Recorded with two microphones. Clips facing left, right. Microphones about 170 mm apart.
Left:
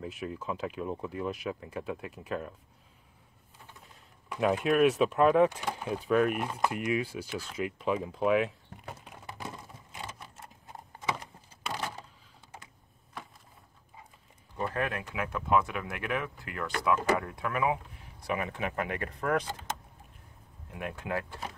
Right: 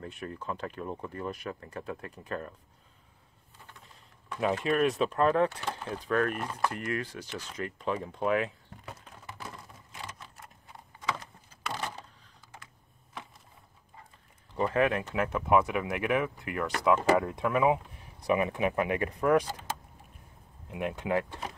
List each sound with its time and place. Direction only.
0.0 s speech: 5° left (ahead or behind)
3.8 s speech: centre (ahead or behind)
11.0 s a sound: 20° left (ahead or behind)
14.7 s speech: 20° right (ahead or behind)